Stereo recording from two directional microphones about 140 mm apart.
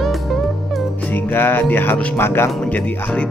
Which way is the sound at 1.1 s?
15° left (ahead or behind).